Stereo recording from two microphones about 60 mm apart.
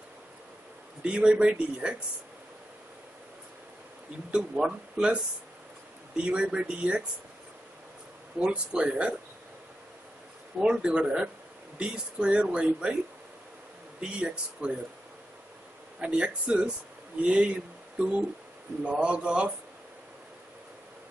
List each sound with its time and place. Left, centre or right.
1.0 s speech: centre
4.3 s speech: centre
8.4 s speech: centre
10.6 s speech: centre
14.2 s speech: centre
16.0 s speech: centre